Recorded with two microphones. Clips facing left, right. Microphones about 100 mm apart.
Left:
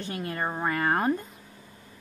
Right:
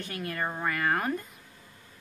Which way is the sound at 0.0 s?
25° left (ahead or behind).